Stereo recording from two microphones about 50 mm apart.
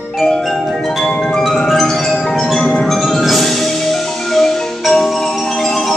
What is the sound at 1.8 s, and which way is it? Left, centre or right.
Mallet percussion, centre.